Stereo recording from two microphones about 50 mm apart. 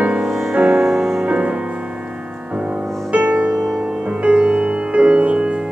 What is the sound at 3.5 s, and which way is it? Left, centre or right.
Music, centre.